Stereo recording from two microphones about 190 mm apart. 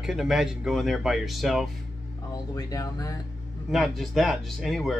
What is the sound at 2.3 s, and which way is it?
Speech, 20° left (ahead or behind).